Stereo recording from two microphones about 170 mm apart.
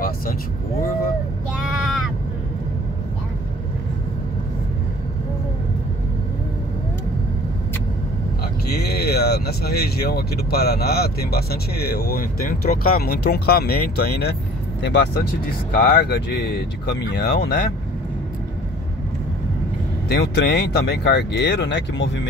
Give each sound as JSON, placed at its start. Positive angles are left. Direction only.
{"t": 8.7, "sound": "speech", "side_deg": 70}
{"t": 14.8, "sound": "speech", "side_deg": 90}
{"t": 15.7, "sound": "speech", "side_deg": 70}
{"t": 20.1, "sound": "speech", "side_deg": 80}